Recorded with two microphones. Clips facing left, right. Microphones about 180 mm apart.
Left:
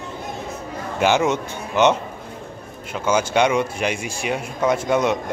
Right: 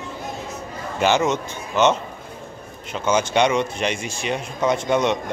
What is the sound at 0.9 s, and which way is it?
Speech, 10° left (ahead or behind).